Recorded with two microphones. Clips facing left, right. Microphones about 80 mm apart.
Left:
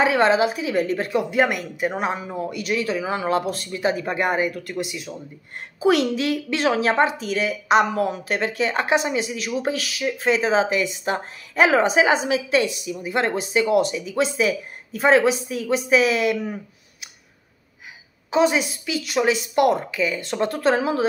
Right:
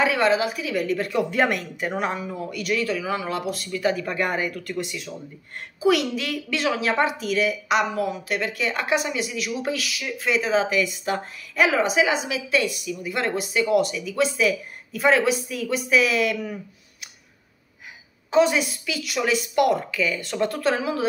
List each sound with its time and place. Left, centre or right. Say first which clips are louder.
0.0 s speech: left 3 dB; left
1.3 s speech: left 2 dB; centre
5.8 s speech: left 2 dB; left
18.3 s speech: even; left